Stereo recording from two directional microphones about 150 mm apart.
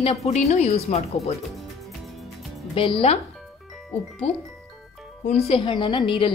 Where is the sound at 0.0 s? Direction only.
45° left (ahead or behind).